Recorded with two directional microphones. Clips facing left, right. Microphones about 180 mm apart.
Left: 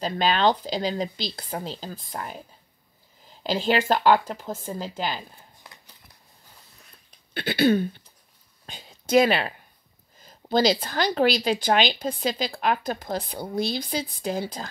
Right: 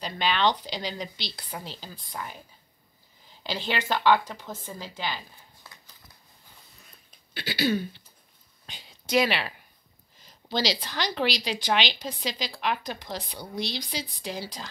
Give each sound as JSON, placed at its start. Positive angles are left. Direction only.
{"t": 0.0, "sound": "a woman's voice", "side_deg": 40}
{"t": 7.3, "sound": "a sound", "side_deg": 55}
{"t": 8.6, "sound": "speech", "side_deg": 45}